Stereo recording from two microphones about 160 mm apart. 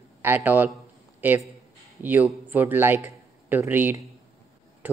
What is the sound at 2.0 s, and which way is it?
A man's voice, 10° right (ahead or behind).